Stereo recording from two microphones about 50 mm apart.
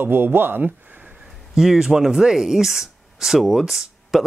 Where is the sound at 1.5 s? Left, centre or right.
Centre.